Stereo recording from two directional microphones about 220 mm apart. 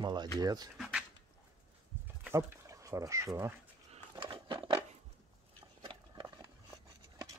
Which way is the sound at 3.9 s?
25° right (ahead or behind).